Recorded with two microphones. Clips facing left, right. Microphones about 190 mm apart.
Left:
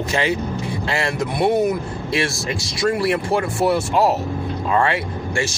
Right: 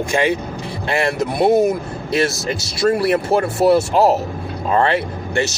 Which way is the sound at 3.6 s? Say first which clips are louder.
Right 5 dB; 25° right (ahead or behind).